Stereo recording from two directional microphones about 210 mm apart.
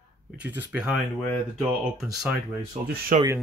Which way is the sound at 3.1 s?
40° right (ahead or behind).